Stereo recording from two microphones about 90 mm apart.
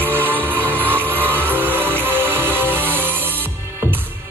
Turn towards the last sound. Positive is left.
turn(degrees=-20)  # may be behind; listen again after turning